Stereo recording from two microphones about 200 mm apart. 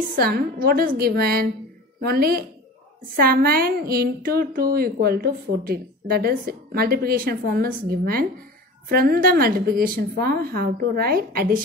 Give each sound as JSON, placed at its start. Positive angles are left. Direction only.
{"t": 0.1, "sound": "a woman's voice", "side_deg": -50}